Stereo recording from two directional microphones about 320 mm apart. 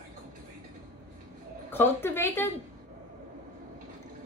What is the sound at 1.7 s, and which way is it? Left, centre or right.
Speech, centre.